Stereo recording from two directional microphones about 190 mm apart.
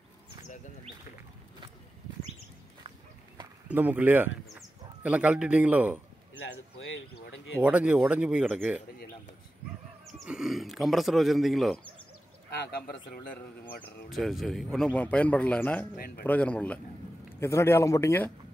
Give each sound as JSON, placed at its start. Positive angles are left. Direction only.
{"t": 3.6, "sound": "speech", "side_deg": -10}
{"t": 6.9, "sound": "a sound", "side_deg": 80}
{"t": 7.6, "sound": "a man's voice", "side_deg": -5}
{"t": 10.1, "sound": "a man's voice", "side_deg": -5}
{"t": 12.4, "sound": "a man's voice", "side_deg": 55}
{"t": 14.1, "sound": "a man's voice", "side_deg": 0}